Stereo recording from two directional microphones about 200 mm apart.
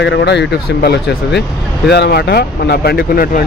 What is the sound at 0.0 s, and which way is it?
Speech, 60° left (ahead or behind).